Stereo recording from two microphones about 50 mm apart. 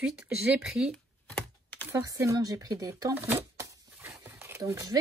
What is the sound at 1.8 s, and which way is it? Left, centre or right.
Speech, right.